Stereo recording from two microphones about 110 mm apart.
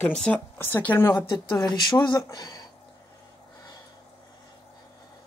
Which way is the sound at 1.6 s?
40° left (ahead or behind).